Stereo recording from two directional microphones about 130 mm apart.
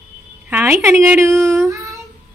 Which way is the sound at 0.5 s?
15° right (ahead or behind).